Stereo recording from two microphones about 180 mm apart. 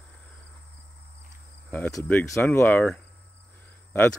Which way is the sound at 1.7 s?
15° left (ahead or behind).